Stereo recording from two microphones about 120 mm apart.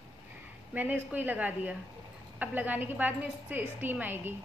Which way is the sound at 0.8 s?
15° right (ahead or behind).